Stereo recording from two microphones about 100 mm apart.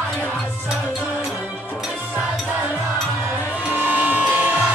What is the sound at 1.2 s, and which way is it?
Music, 10° right (ahead or behind).